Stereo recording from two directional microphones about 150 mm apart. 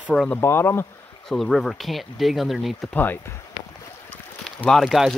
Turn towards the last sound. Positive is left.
turn(degrees=0)  # may be behind; listen again after turning